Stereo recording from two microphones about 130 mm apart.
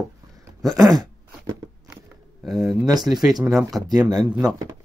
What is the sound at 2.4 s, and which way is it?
Speech, centre (ahead or behind).